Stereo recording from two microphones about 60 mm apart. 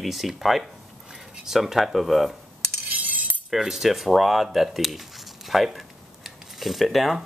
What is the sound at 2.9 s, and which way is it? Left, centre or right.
Chink, right.